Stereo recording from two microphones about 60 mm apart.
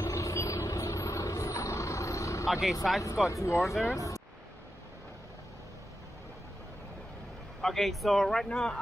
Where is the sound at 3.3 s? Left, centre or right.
Left.